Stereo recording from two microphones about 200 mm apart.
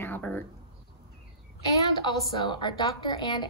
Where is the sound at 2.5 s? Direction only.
25° left (ahead or behind).